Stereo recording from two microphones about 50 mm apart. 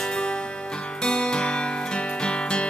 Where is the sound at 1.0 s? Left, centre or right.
Centre.